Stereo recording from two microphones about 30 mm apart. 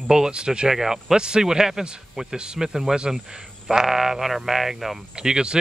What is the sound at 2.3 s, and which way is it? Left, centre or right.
Speech, right.